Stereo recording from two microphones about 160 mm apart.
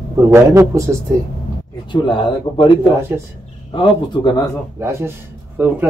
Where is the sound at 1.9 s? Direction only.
30° left (ahead or behind).